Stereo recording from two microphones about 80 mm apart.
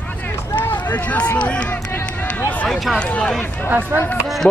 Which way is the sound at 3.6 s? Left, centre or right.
Right.